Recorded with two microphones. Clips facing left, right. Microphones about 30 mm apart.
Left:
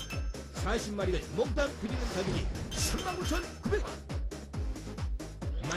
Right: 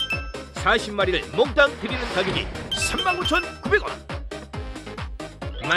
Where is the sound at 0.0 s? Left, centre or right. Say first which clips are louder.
Right 14 dB; right.